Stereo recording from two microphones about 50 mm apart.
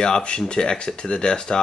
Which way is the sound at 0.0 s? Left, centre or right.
Centre.